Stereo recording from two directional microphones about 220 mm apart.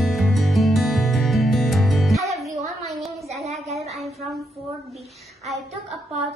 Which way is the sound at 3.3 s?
Centre (ahead or behind).